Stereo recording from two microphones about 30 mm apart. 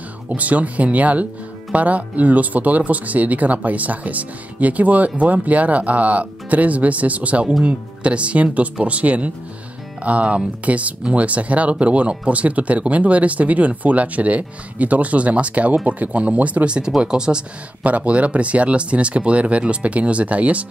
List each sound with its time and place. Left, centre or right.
0.4 s speech: right
16.6 s speech: right
17.8 s speech: right